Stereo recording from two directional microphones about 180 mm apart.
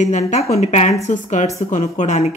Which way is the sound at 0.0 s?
40° left (ahead or behind).